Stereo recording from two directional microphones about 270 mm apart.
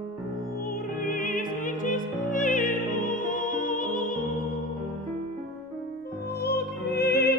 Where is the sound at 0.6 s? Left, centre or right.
Left.